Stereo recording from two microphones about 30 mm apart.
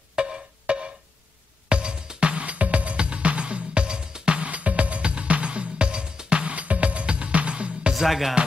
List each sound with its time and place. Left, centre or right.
0.1 s music: right
2.4 s music: right
4.5 s music: right
6.5 s music: right
7.9 s music: centre